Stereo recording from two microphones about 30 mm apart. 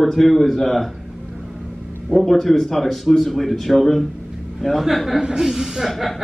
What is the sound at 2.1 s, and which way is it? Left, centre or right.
Speech, centre.